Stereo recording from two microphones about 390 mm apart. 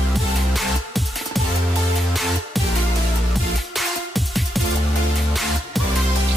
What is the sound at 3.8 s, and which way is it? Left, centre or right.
Music, centre.